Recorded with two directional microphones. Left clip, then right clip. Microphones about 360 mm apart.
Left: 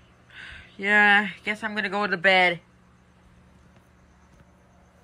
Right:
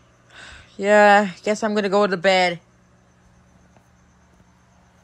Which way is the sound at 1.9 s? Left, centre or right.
Centre.